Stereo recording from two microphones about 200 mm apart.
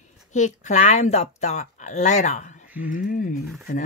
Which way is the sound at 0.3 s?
35° left (ahead or behind).